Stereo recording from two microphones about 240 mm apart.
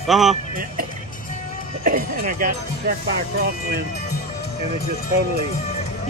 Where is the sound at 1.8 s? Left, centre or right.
Right.